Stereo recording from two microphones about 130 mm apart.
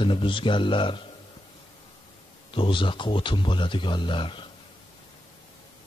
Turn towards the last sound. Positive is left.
turn(degrees=40)  # may be behind; listen again after turning